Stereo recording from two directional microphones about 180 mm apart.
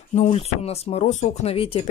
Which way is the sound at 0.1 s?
40° left (ahead or behind).